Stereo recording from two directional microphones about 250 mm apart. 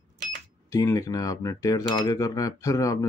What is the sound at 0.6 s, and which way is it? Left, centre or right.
Cutlery, centre.